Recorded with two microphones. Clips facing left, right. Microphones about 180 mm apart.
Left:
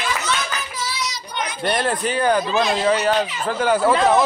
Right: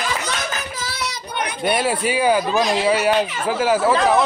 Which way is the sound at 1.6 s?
10° right (ahead or behind).